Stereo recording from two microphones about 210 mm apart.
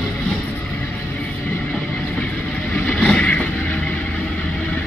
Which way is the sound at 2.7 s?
5° left (ahead or behind).